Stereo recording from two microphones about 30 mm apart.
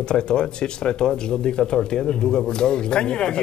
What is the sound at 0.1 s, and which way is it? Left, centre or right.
A man's voice, left.